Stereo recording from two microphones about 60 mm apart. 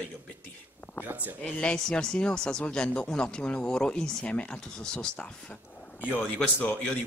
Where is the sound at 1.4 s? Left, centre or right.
Centre.